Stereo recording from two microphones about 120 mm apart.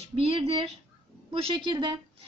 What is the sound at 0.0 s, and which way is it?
A woman's voice, 50° right (ahead or behind).